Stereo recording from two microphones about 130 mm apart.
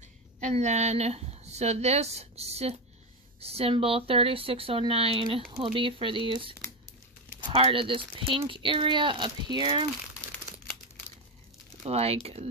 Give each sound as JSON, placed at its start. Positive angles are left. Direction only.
{"t": 0.4, "sound": "a woman's voice", "side_deg": -60}
{"t": 11.9, "sound": "speech", "side_deg": -50}